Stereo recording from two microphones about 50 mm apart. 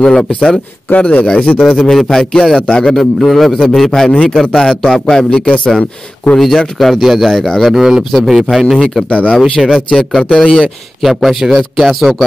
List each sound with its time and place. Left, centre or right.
0.0 s a man's voice: centre
0.9 s speech: left
1.6 s a man's voice: centre
7.7 s a man's voice: centre
9.1 s speech: left
9.4 s a man's voice: centre
10.3 s a man's voice: centre
11.0 s a man's voice: centre